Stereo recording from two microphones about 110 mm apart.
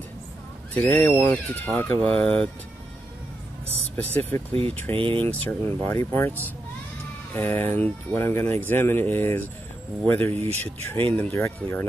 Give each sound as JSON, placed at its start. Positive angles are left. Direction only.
{"t": 0.7, "sound": "speech", "side_deg": 15}
{"t": 3.9, "sound": "speech", "side_deg": 20}
{"t": 4.9, "sound": "speech", "side_deg": -55}
{"t": 5.2, "sound": "speech", "side_deg": 15}